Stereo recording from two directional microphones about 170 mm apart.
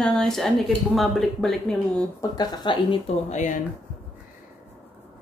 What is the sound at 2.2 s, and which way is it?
Speech, 25° left (ahead or behind).